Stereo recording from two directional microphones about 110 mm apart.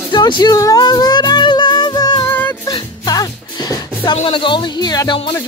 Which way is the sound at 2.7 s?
35° left (ahead or behind).